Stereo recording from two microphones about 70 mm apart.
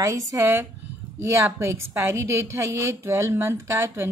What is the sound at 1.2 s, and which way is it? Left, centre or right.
A woman's voice, right.